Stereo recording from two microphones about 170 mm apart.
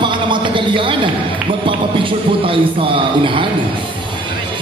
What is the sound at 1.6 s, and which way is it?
Speech, 30° right (ahead or behind).